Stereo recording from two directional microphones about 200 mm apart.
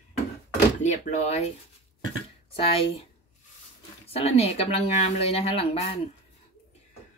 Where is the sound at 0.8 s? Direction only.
35° left (ahead or behind).